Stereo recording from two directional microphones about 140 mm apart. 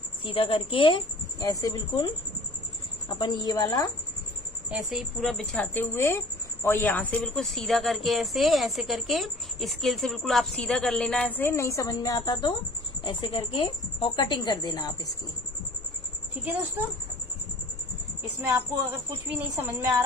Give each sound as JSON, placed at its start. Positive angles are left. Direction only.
{"t": 0.2, "sound": "a woman's voice", "side_deg": 40}
{"t": 1.4, "sound": "a woman's voice", "side_deg": 25}
{"t": 3.1, "sound": "a woman's voice", "side_deg": 30}
{"t": 4.6, "sound": "a woman's voice", "side_deg": 0}
{"t": 19.2, "sound": "a woman's voice", "side_deg": -15}